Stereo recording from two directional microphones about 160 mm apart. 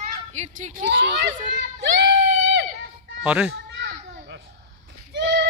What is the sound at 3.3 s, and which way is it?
Speech, 10° right (ahead or behind).